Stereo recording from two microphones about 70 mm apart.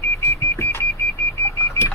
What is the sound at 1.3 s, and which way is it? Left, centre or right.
Vehicle, left.